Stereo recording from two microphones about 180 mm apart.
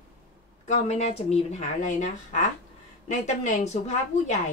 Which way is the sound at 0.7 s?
40° left (ahead or behind).